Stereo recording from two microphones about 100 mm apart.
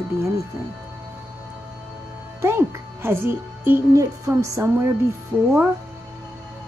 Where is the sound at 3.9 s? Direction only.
35° right (ahead or behind).